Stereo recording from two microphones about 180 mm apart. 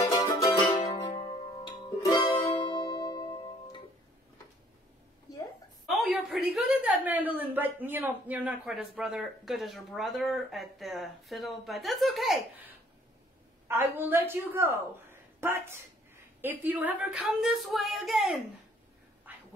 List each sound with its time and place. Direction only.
0.0 s music: 20° left (ahead or behind)
5.9 s a woman's voice: centre (ahead or behind)
13.7 s a woman's voice: 10° right (ahead or behind)
19.3 s quack: 10° right (ahead or behind)